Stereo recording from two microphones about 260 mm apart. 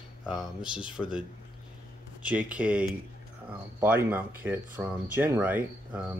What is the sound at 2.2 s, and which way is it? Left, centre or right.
Speech, centre.